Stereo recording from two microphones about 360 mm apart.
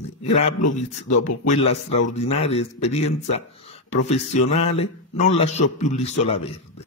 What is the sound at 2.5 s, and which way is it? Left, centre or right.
Speech, centre.